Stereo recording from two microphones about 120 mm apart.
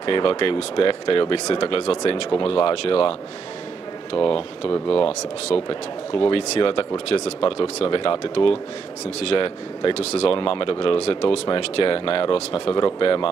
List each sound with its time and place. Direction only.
0.0 s speech: 45° left (ahead or behind)
11.4 s speech: 45° left (ahead or behind)
12.7 s speech: 40° left (ahead or behind)